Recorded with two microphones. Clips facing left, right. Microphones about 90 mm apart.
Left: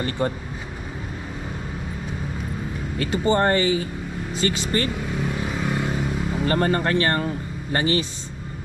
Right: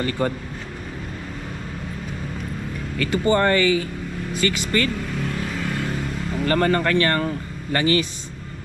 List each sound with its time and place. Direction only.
3.0 s speech: 25° left (ahead or behind)
5.1 s vehicle: 15° left (ahead or behind)
6.4 s speech: 25° left (ahead or behind)